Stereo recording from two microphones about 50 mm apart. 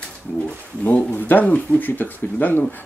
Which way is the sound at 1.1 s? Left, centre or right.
Left.